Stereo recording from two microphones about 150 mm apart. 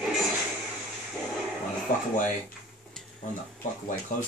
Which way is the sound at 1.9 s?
65° left (ahead or behind).